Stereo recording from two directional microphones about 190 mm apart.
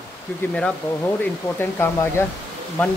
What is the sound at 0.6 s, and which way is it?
Speech, 5° left (ahead or behind).